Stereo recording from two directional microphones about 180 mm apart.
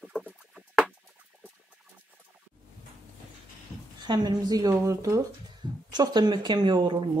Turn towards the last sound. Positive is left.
turn(degrees=-25)  # may be behind; listen again after turning